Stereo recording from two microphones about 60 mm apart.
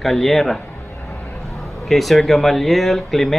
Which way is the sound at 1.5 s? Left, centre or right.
Centre.